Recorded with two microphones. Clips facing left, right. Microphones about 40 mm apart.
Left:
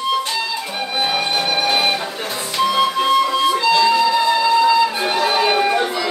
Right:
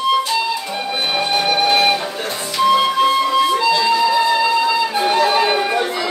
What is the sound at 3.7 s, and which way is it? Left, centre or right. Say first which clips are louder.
Music: left 1 dB; centre.